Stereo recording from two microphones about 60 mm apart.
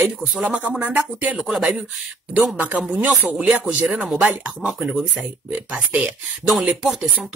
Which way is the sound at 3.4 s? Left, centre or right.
Right.